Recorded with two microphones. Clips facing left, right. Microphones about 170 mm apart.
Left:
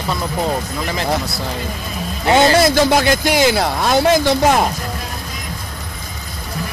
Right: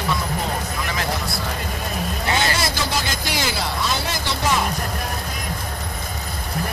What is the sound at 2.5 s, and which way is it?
Speech, 60° left (ahead or behind).